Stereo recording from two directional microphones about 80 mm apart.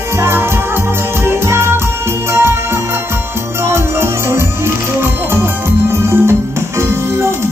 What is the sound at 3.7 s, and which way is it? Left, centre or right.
Music, right.